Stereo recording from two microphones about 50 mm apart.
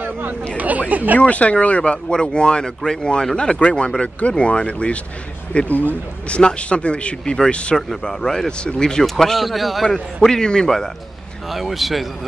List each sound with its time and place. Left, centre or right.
0.6 s speech: right
1.2 s a man's voice: left; by 10.0 s centre
10.2 s speech: centre
11.5 s speech: centre